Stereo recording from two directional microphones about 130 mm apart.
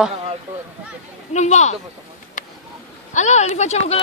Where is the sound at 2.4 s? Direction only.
80° left.